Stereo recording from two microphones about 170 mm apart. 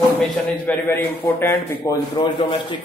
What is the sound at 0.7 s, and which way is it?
A man's voice, 10° left (ahead or behind).